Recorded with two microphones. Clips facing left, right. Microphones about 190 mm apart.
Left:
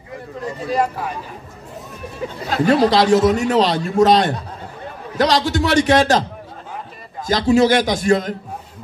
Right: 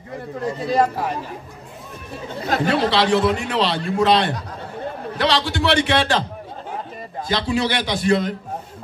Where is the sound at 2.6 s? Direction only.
40° left (ahead or behind).